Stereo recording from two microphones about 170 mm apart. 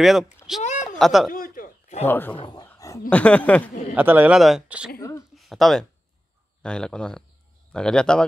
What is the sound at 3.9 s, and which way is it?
A man's voice, 10° right (ahead or behind).